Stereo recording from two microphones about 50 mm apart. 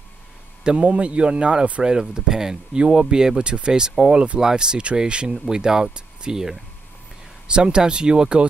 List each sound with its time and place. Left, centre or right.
0.7 s speech: right